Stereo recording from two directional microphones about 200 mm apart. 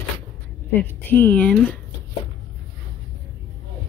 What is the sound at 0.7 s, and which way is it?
A woman's voice, 10° left (ahead or behind).